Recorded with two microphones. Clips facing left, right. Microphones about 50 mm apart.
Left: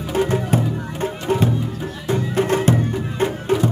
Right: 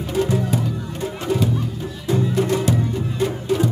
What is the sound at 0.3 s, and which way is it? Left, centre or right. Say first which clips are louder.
Music: left 2 dB; left.